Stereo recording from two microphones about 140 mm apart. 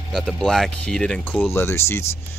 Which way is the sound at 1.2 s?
15° left (ahead or behind).